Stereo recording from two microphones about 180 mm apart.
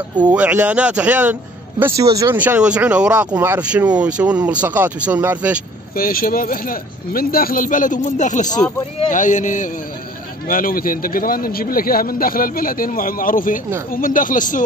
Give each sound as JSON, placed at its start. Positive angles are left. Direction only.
{"t": 0.3, "sound": "speech", "side_deg": -10}
{"t": 5.9, "sound": "a man's voice", "side_deg": 50}